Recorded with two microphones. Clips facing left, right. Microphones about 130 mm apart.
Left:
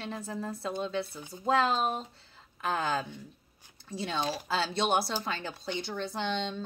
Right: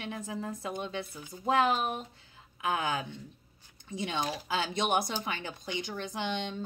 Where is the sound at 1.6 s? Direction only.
15° right (ahead or behind).